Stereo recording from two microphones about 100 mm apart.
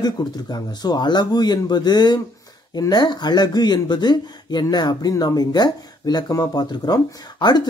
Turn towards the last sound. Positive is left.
turn(degrees=45)  # may be behind; listen again after turning